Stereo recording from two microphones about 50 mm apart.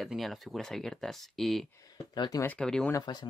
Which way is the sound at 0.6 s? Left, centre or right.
Centre.